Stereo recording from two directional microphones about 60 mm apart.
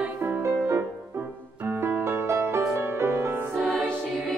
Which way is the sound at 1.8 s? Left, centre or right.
Right.